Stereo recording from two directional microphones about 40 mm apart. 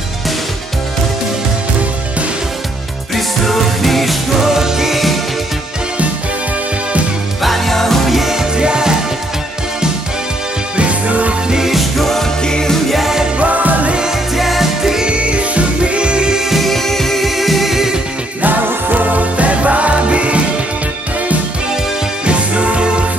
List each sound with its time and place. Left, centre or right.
3.2 s music: centre
4.5 s music: centre
7.4 s music: centre
8.1 s music: centre
8.5 s music: right
10.8 s music: right
11.5 s music: centre
12.9 s music: centre
13.4 s music: right
14.3 s music: centre
15.0 s music: right
16.4 s music: centre
18.4 s music: right
22.2 s music: right